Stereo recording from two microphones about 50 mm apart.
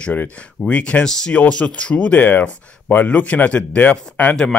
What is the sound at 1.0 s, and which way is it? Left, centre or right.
Speech, centre.